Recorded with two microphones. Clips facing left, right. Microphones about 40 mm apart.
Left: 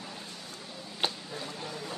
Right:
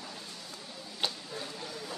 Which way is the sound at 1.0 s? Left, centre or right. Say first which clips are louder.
Left 2 dB; left.